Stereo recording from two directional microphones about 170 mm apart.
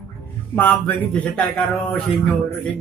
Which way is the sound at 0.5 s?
10° left (ahead or behind).